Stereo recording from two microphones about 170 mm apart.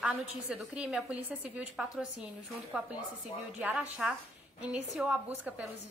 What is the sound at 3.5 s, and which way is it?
A woman's voice, 10° right (ahead or behind).